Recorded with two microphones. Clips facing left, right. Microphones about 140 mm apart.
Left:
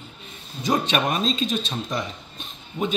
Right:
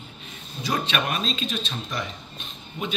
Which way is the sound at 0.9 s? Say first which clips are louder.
Left 4 dB; 35° left (ahead or behind).